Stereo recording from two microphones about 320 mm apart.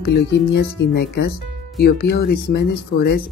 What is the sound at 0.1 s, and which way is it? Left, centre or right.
Speech, left.